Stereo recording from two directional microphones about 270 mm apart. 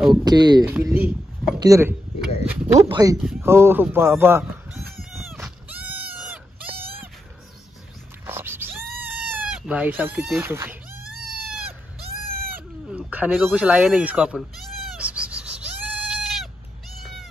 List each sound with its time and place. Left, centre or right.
0.1 s speech: centre
0.7 s a sound: centre
1.6 s speech: centre
5.1 s goat: centre
8.3 s a sound: centre
9.0 s goat: centre
11.1 s cat: centre
12.9 s speech: centre
15.0 s goat: centre
17.0 s cat: centre